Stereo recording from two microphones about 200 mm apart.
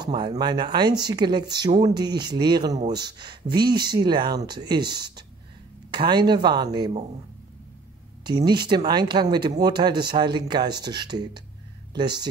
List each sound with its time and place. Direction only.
0.0 s speech: 25° right (ahead or behind)
3.6 s speech: 50° right (ahead or behind)
3.9 s speech: 20° right (ahead or behind)
5.9 s speech: 20° right (ahead or behind)
8.2 s speech: 20° right (ahead or behind)